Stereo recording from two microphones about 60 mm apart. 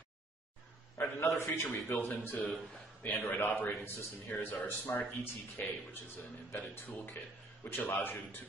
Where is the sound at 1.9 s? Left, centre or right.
Left.